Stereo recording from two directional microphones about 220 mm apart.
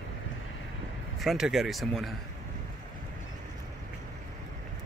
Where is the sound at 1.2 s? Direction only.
Centre (ahead or behind).